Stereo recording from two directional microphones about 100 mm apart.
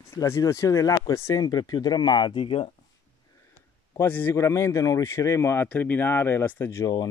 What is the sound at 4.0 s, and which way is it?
Speech, 20° left (ahead or behind).